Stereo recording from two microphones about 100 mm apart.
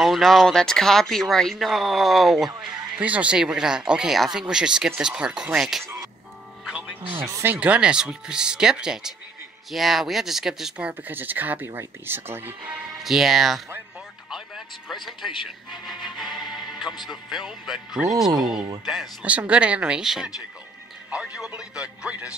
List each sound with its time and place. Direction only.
0.0 s speech: centre (ahead or behind)
2.6 s speech: 15° right (ahead or behind)
6.6 s music: 10° right (ahead or behind)
7.2 s speech: 30° right (ahead or behind)
7.5 s speech: 10° right (ahead or behind)
13.0 s speech: 5° right (ahead or behind)